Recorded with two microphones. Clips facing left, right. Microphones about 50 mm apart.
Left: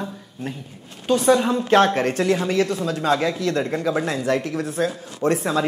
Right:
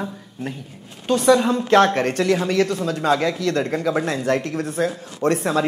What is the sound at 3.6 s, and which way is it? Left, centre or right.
Speech, right.